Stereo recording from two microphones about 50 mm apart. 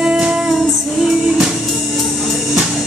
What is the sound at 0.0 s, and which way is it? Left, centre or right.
Music, centre.